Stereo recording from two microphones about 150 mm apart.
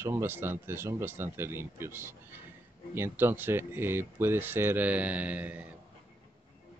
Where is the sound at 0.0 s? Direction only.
15° right (ahead or behind).